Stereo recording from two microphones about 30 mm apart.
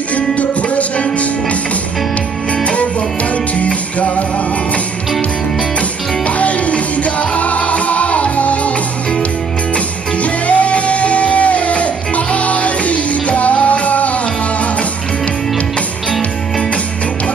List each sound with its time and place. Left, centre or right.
0.4 s music: left
5.8 s music: left
10.1 s music: left